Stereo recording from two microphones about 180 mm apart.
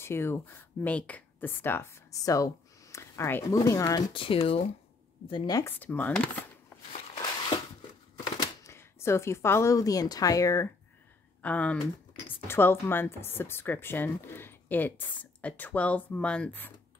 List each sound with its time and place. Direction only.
0.0 s speech: 15° left (ahead or behind); by 4.6 s 35° left (ahead or behind)
5.3 s speech: 20° left (ahead or behind)
7.2 s a sound: 25° left (ahead or behind)
8.6 s a woman's voice: 15° left (ahead or behind)
11.4 s speech: 5° left (ahead or behind)